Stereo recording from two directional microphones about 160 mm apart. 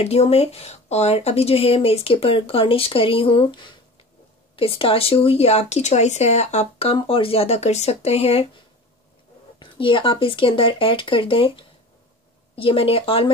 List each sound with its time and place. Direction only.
0.0 s speech: 40° left (ahead or behind)
9.6 s speech: 30° left (ahead or behind)